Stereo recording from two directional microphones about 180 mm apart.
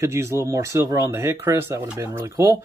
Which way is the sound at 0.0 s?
15° right (ahead or behind).